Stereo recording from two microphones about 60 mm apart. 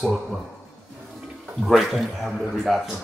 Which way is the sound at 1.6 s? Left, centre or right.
Centre.